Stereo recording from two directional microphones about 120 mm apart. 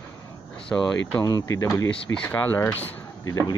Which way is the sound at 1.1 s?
25° left (ahead or behind).